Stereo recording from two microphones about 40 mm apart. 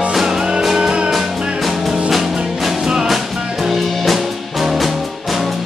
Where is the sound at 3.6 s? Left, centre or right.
Centre.